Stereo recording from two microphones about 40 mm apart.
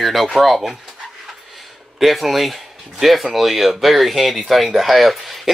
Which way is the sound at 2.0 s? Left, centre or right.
Centre.